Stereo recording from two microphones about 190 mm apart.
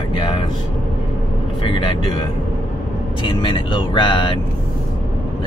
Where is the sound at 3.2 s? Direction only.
25° left (ahead or behind).